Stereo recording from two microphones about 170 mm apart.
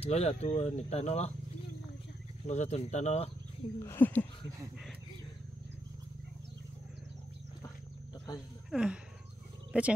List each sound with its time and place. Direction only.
0.0 s speech: 40° left (ahead or behind)
2.4 s speech: 45° left (ahead or behind)
3.8 s speech: 15° left (ahead or behind)
8.6 s speech: 5° right (ahead or behind)